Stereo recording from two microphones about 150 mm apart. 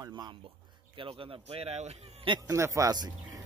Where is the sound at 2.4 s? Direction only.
20° right (ahead or behind).